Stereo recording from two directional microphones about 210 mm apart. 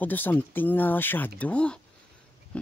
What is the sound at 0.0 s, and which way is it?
Speech, 10° left (ahead or behind).